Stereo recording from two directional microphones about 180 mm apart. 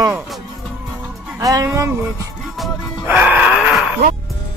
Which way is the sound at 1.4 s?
20° right (ahead or behind).